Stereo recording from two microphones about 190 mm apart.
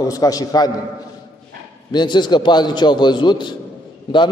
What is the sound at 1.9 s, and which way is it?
A man's voice, 25° left (ahead or behind).